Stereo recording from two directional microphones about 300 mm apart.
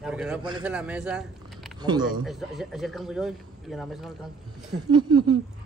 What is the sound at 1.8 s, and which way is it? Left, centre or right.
Speech, centre.